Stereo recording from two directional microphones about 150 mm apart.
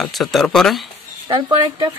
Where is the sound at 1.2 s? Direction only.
35° right (ahead or behind).